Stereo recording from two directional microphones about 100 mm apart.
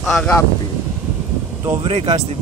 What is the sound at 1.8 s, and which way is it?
Speech, 60° right (ahead or behind).